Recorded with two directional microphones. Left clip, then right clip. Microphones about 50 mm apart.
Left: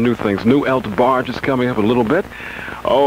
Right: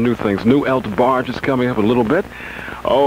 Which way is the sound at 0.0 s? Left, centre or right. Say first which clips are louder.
Even; left.